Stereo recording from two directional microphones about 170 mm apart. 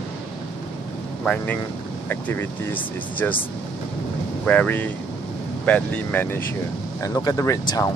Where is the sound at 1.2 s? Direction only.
10° left (ahead or behind).